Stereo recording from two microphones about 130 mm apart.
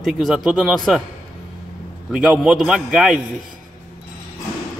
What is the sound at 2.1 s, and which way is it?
A man's voice, 5° right (ahead or behind).